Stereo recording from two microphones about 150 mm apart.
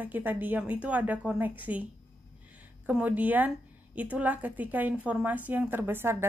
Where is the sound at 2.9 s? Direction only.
10° right (ahead or behind).